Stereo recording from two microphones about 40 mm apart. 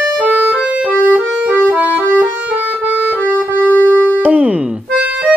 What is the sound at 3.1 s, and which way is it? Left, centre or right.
Music, left.